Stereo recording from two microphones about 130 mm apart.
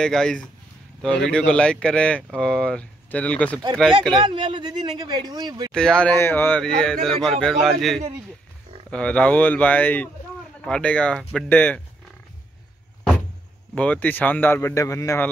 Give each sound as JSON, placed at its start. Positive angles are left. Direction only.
{"t": 0.0, "sound": "a man's voice", "side_deg": 5}
{"t": 4.2, "sound": "speech", "side_deg": -40}
{"t": 5.7, "sound": "speech", "side_deg": 5}
{"t": 6.1, "sound": "speech", "side_deg": 15}
{"t": 6.6, "sound": "a man's voice", "side_deg": 5}
{"t": 13.7, "sound": "speech", "side_deg": 10}